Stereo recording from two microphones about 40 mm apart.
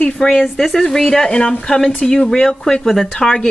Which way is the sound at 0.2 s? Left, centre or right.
Centre.